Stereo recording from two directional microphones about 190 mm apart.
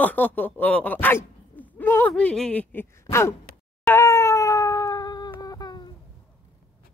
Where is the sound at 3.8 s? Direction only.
15° left (ahead or behind).